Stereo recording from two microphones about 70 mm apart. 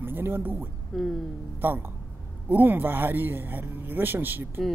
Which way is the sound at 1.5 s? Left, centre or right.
Right.